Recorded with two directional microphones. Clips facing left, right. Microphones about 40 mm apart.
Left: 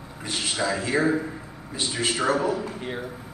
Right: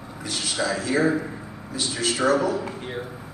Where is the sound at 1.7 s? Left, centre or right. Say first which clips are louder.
Even; left.